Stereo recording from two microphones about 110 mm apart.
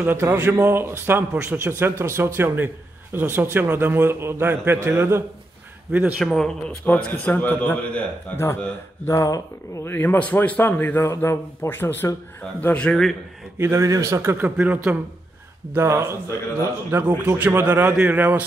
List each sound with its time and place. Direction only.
0.0 s a man's voice: 20° right (ahead or behind)
6.1 s speech: centre (ahead or behind)
6.9 s a man's voice: 15° left (ahead or behind)
9.0 s a man's voice: 30° left (ahead or behind)
9.8 s a man's voice: 20° left (ahead or behind)
13.6 s a man's voice: 25° right (ahead or behind)